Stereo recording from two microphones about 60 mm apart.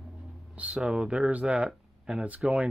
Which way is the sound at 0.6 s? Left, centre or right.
Centre.